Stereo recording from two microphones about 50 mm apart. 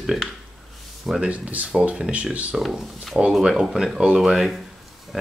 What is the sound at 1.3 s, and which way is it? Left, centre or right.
Speech, right.